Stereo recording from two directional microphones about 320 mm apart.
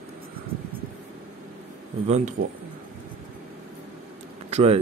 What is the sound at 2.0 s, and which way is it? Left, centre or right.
Speech, right.